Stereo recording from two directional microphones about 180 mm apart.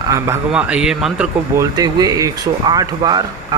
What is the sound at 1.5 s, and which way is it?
A man's voice, 20° right (ahead or behind).